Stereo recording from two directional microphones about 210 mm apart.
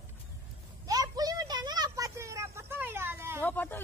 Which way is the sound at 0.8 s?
15° right (ahead or behind).